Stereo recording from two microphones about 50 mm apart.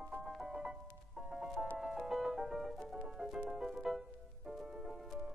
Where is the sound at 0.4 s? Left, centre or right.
Centre.